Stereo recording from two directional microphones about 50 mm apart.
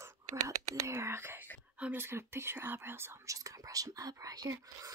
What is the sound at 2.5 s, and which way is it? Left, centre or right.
Speech, right.